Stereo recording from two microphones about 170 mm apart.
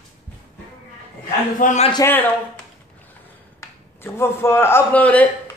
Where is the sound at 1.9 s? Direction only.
15° left (ahead or behind).